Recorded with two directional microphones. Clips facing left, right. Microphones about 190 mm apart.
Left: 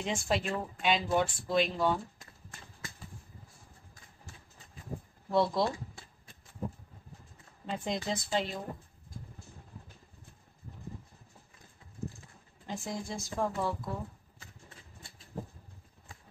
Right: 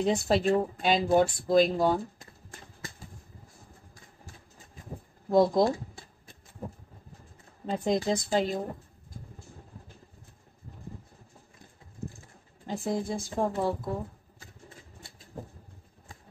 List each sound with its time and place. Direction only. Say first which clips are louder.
0.0 s speech: right 7 dB; 35° right (ahead or behind)
5.3 s speech: right 6 dB; 40° right (ahead or behind)
7.6 s speech: right 7 dB; 40° right (ahead or behind)
12.6 s speech: right 7 dB; 30° right (ahead or behind)
13.0 s speech: right 6 dB; 55° right (ahead or behind)
13.4 s a woman's voice: right 4 dB; 30° right (ahead or behind)